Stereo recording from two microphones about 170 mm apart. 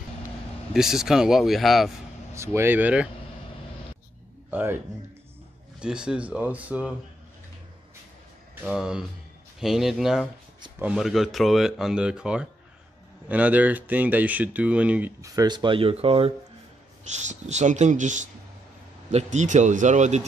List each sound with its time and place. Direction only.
0.7 s speech: centre (ahead or behind)
2.3 s speech: 15° right (ahead or behind)
4.5 s speech: 10° right (ahead or behind)
8.6 s speech: 5° right (ahead or behind); by 20.2 s 45° right (ahead or behind)